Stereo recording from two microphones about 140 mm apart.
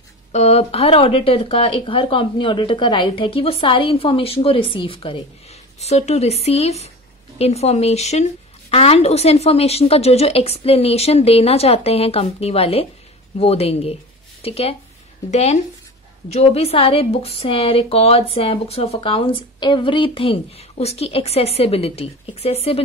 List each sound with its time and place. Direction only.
0.3 s speech: 50° left (ahead or behind)
5.8 s a woman's voice: 50° left (ahead or behind)